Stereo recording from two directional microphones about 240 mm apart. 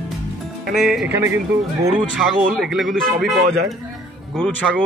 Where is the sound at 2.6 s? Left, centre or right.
Centre.